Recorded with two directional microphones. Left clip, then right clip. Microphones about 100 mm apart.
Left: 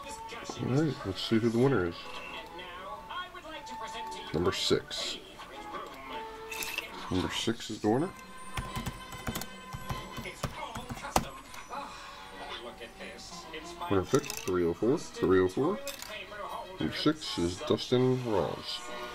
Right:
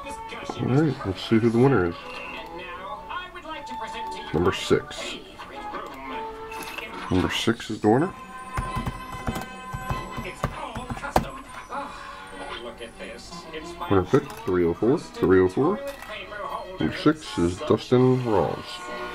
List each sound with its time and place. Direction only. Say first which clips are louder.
0.5 s speech: right 7 dB; 10° right (ahead or behind)
1.0 s speech: right 7 dB; centre (ahead or behind)
3.8 s music: right 5 dB; 15° right (ahead or behind)
4.3 s speech: right 6 dB; centre (ahead or behind)
7.1 s speech: right 9 dB; 10° right (ahead or behind)
8.5 s music: right 8 dB; 15° right (ahead or behind)
13.7 s speech: right 7 dB; 10° right (ahead or behind)
15.0 s speech: right 7 dB; 10° right (ahead or behind)
16.4 s music: right 8 dB; 10° right (ahead or behind)
16.9 s speech: right 6 dB; centre (ahead or behind)
18.0 s speech: right 8 dB; 10° right (ahead or behind)